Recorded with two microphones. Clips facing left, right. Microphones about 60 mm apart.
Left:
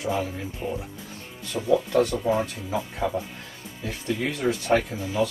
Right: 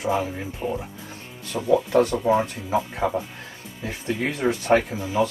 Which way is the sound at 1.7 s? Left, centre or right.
Right.